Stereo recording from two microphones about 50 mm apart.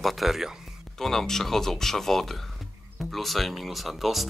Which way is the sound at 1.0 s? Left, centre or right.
Centre.